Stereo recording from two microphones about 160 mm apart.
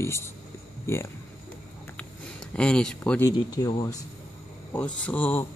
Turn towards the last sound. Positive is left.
turn(degrees=10)  # may be behind; listen again after turning